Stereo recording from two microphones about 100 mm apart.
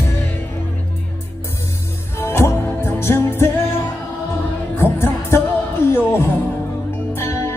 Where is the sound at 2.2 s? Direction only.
25° left (ahead or behind).